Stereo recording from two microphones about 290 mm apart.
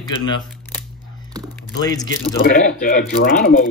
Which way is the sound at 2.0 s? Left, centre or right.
Left.